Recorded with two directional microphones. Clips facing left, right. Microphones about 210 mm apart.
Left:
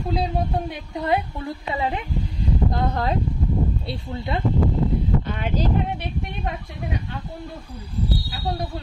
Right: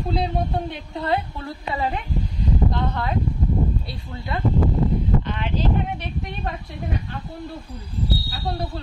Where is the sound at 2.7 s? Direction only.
40° left (ahead or behind).